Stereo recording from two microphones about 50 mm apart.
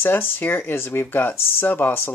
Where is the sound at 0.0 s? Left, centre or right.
Left.